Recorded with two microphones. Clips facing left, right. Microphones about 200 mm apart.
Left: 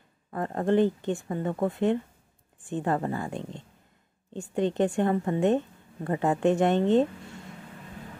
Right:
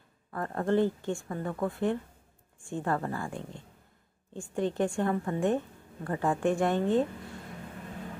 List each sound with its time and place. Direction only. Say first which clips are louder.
0.3 s speech: left 3 dB; 20° left (ahead or behind)